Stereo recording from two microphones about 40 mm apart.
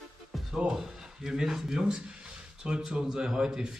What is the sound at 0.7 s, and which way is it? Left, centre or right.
Speech, centre.